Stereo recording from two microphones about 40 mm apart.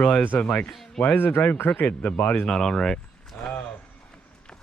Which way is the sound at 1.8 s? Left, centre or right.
Left.